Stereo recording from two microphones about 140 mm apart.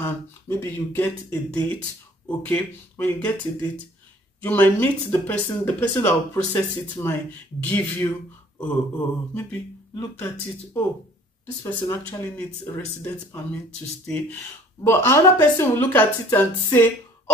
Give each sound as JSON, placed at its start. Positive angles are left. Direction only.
{"t": 0.0, "sound": "speech", "side_deg": 15}
{"t": 9.3, "sound": "speech", "side_deg": 15}
{"t": 14.8, "sound": "speech", "side_deg": 20}